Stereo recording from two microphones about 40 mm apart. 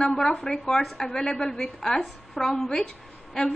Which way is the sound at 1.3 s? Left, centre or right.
Left.